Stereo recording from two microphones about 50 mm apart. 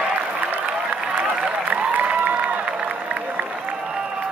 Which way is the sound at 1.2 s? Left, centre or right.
Right.